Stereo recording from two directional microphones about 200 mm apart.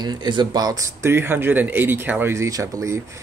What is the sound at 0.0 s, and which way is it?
Speech, 20° right (ahead or behind).